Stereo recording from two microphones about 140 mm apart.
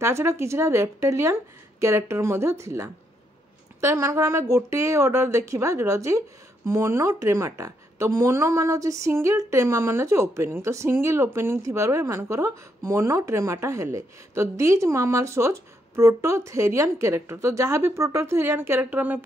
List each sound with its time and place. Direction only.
0.0 s a woman's voice: 20° right (ahead or behind)